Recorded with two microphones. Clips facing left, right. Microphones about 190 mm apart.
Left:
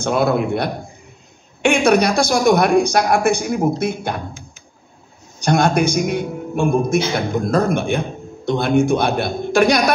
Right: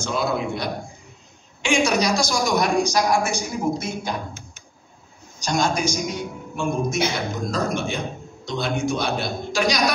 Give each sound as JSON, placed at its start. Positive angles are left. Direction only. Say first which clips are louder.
{"t": 0.0, "sound": "a man's voice", "louder": "left 7 dB", "side_deg": 60}
{"t": 5.4, "sound": "a man's voice", "louder": "left 7 dB", "side_deg": 60}